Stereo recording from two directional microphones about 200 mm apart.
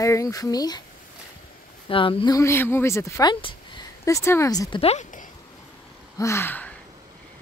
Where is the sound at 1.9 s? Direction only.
25° left (ahead or behind).